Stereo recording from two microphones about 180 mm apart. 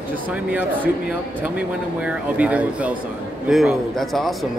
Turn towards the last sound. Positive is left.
turn(degrees=0)  # may be behind; listen again after turning